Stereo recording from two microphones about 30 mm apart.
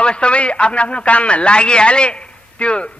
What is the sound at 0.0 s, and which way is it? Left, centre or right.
A man's voice, left.